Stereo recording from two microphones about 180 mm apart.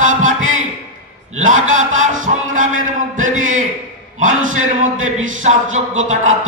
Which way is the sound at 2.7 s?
90° right.